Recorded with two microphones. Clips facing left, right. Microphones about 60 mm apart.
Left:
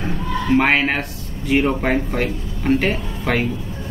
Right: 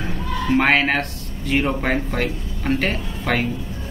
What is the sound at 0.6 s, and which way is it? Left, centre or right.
Speech, centre.